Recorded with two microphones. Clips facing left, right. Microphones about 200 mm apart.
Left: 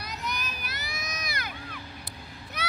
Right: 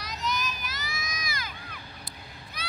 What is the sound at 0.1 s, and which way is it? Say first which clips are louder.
Vehicle: right 5 dB; 60° left (ahead or behind).